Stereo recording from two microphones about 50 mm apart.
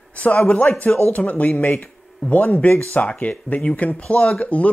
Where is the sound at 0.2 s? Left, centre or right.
Left.